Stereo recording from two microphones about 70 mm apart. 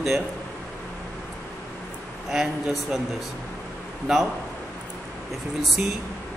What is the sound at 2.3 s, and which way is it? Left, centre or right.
Speech, centre.